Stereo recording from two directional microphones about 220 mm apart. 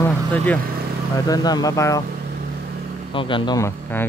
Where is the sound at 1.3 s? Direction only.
15° left (ahead or behind).